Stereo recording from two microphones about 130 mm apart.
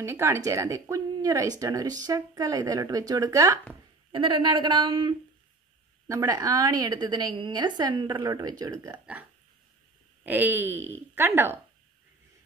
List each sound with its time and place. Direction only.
0.0 s speech: 20° right (ahead or behind)
4.1 s a woman's voice: 40° right (ahead or behind)
6.0 s a woman's voice: 25° right (ahead or behind)
10.2 s speech: 15° right (ahead or behind)